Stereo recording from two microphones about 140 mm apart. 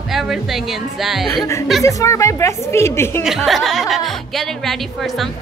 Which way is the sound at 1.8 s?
20° left (ahead or behind).